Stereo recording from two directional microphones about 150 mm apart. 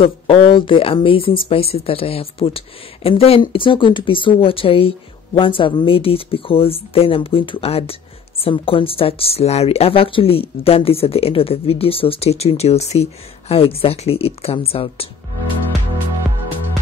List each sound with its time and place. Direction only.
0.0 s speech: 35° left (ahead or behind)